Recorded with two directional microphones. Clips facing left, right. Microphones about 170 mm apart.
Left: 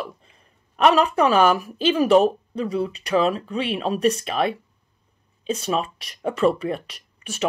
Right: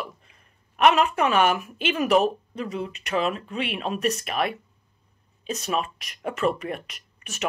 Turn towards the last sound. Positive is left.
turn(degrees=30)  # may be behind; listen again after turning